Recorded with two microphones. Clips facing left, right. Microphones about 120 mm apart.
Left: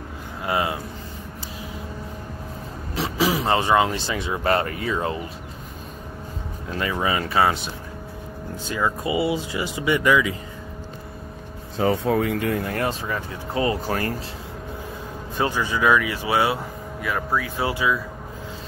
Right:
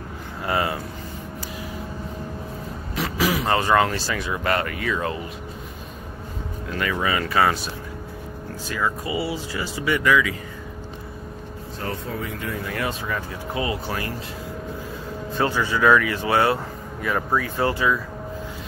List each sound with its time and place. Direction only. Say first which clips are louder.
0.5 s speech: even; 10° left (ahead or behind)
3.0 s speech: left 1 dB; 30° left (ahead or behind)
6.8 s speech: even; 25° left (ahead or behind)
8.6 s speech: left 2 dB; 20° left (ahead or behind)
11.8 s speech: left 10 dB; 75° left (ahead or behind)
12.6 s speech: left 2 dB; 45° left (ahead or behind)
15.3 s speech: right 1 dB; 15° left (ahead or behind)